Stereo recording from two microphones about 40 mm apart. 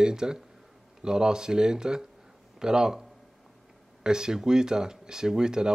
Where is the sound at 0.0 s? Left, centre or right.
Centre.